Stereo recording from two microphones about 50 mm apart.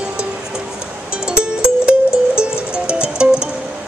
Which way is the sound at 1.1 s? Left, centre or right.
Centre.